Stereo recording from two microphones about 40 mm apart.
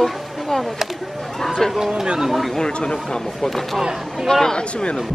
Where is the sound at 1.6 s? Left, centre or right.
Centre.